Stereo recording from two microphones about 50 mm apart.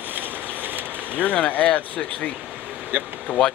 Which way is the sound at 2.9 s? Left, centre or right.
Right.